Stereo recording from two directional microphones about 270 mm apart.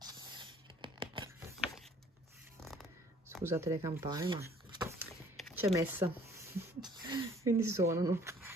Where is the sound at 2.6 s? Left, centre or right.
Centre.